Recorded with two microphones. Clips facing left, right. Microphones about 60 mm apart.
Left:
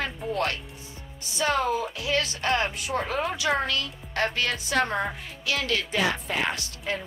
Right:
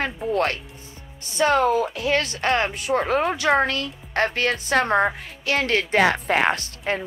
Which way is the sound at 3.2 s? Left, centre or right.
Right.